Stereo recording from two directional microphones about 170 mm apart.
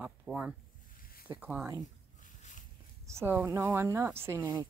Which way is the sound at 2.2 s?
50° left (ahead or behind).